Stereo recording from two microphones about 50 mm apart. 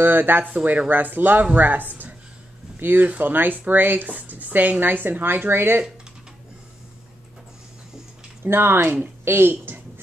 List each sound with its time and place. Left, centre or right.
0.0 s speech: right
8.5 s speech: right